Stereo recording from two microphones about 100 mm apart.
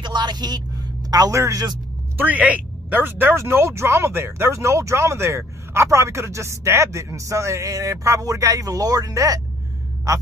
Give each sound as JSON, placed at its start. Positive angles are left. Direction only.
{"t": 0.0, "sound": "a sound", "side_deg": -45}
{"t": 1.0, "sound": "a man's voice", "side_deg": -40}
{"t": 2.1, "sound": "speech", "side_deg": -15}